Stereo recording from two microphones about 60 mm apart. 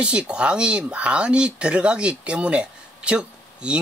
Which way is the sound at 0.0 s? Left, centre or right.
Centre.